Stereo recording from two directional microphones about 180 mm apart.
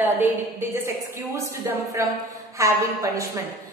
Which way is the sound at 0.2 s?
10° right (ahead or behind).